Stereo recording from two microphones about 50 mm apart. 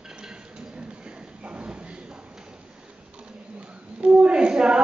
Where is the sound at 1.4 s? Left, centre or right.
Right.